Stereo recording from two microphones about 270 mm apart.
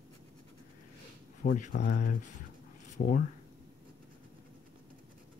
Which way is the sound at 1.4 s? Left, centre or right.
Left.